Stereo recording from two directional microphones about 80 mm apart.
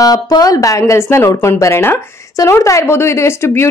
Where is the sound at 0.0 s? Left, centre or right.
Left.